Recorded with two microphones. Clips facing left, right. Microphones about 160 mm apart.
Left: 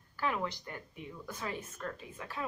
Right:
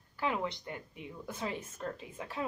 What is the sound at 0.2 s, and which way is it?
Speech, 20° right (ahead or behind).